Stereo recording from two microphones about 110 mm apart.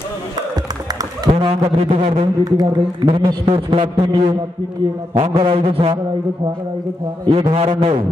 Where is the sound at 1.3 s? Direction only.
60° right (ahead or behind).